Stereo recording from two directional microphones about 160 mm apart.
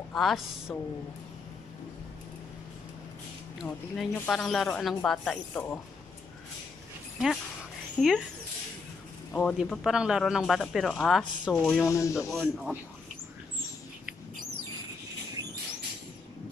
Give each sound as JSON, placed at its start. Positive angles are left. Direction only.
{"t": 0.1, "sound": "speech", "side_deg": 0}
{"t": 3.6, "sound": "speech", "side_deg": 5}
{"t": 8.0, "sound": "speech", "side_deg": 5}
{"t": 9.3, "sound": "speech", "side_deg": 10}
{"t": 9.7, "sound": "speech", "side_deg": -5}
{"t": 11.6, "sound": "speech", "side_deg": 15}
{"t": 12.3, "sound": "speech", "side_deg": 0}